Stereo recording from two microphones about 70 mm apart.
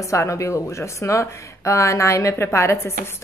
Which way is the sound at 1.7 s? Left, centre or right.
Left.